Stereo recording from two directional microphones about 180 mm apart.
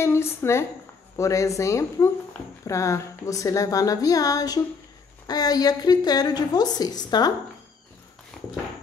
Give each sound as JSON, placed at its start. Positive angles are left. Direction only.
{"t": 0.0, "sound": "a woman's voice", "side_deg": 15}